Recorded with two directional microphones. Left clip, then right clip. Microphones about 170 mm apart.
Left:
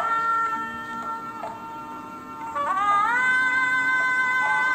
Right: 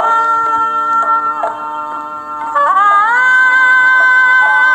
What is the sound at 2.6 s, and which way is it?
Music, 40° right (ahead or behind).